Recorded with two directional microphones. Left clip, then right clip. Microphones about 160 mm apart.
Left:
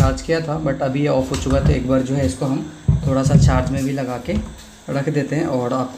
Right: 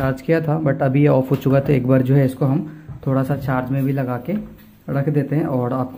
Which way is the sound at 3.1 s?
10° right (ahead or behind).